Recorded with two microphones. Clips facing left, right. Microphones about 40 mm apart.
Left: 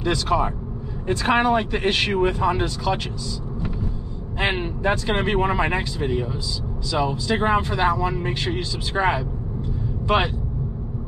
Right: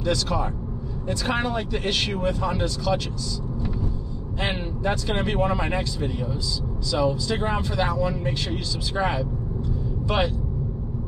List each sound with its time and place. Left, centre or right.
0.0 s speech: left
4.4 s speech: left